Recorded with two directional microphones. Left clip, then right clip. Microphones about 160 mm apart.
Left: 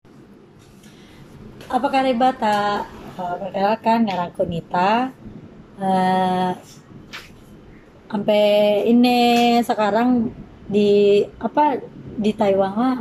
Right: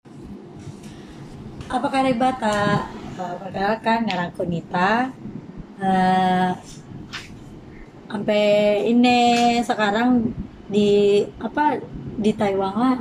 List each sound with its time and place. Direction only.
1.7 s a woman's voice: 10° left (ahead or behind)
8.1 s a woman's voice: 10° left (ahead or behind)